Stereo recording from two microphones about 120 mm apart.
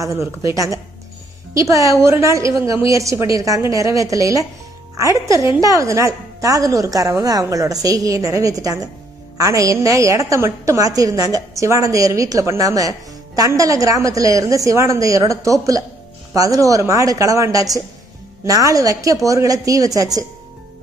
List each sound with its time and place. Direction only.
0.0 s a woman's voice: 25° right (ahead or behind)